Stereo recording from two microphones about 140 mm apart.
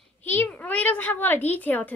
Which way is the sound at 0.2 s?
15° left (ahead or behind).